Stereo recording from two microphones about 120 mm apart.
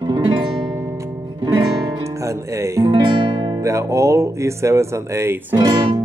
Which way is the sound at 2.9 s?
40° right (ahead or behind).